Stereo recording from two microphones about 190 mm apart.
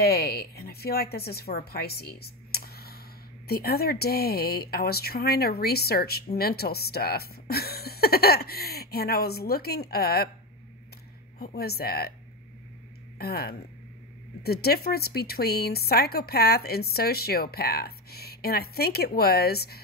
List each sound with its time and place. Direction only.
0.0 s speech: 55° left (ahead or behind)
11.3 s speech: 55° left (ahead or behind)
13.2 s speech: 55° left (ahead or behind)